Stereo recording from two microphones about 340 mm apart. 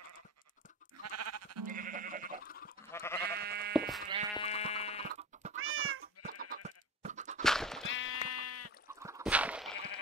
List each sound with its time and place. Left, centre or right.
1.0 s sheep: right
1.7 s sheep: right
2.4 s sheep: left
2.9 s goat: centre
3.3 s sheep: right
3.7 s sheep: centre
4.4 s sheep: centre
5.0 s music: right
5.6 s cat: right
6.2 s goat: right
7.4 s sheep: centre
7.8 s sheep: left
9.0 s a sound: centre